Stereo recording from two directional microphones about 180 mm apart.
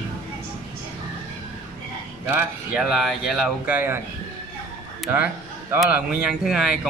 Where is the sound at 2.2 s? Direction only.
5° right (ahead or behind).